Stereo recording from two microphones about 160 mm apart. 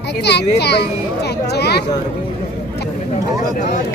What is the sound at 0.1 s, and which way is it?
Speech, 90° left.